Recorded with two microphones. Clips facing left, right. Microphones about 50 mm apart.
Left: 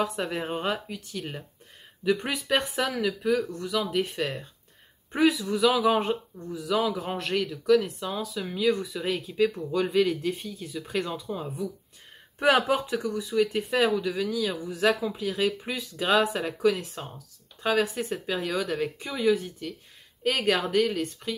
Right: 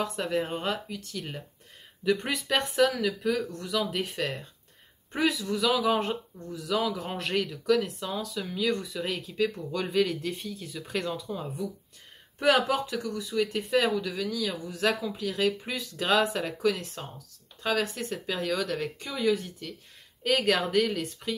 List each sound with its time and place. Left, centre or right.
0.1 s speech: centre
2.0 s speech: centre
12.4 s speech: left; by 21.4 s centre